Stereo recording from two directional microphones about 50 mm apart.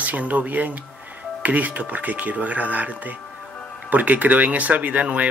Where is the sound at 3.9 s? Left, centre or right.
Right.